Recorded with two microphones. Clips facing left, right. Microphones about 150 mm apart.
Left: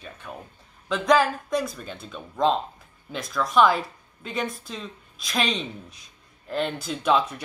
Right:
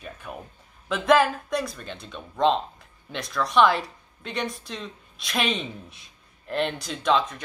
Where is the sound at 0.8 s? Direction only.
5° right (ahead or behind).